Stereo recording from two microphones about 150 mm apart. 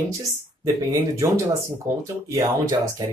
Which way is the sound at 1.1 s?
20° right (ahead or behind).